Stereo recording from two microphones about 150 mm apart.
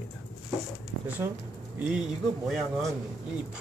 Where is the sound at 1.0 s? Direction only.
10° right (ahead or behind).